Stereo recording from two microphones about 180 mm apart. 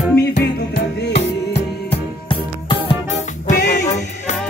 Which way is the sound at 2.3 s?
30° left (ahead or behind).